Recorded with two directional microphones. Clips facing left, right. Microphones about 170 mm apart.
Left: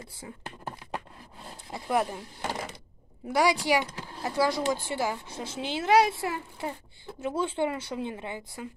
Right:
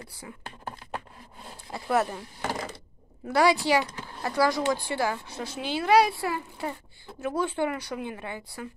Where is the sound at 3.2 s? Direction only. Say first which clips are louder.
Right 2 dB; 15° left (ahead or behind).